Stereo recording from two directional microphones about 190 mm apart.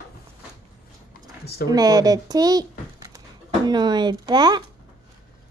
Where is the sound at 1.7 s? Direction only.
20° right (ahead or behind).